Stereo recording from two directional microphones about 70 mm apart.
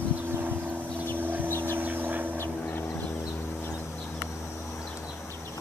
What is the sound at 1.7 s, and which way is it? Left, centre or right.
Vehicle, right.